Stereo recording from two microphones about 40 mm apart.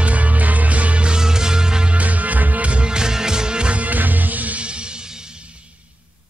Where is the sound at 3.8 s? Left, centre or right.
Right.